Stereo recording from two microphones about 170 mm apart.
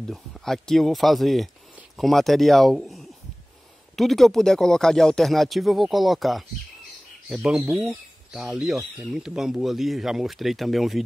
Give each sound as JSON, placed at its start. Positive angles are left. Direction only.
{"t": 0.0, "sound": "speech", "side_deg": 0}